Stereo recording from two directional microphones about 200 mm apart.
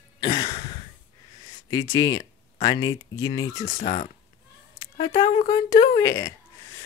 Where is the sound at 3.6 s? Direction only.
35° left (ahead or behind); by 6.3 s 15° left (ahead or behind).